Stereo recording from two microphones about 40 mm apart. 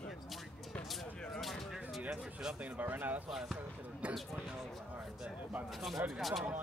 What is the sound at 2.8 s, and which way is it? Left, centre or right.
Speech, right.